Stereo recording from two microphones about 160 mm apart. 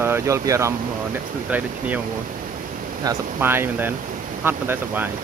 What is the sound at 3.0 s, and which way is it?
Speech, 15° right (ahead or behind).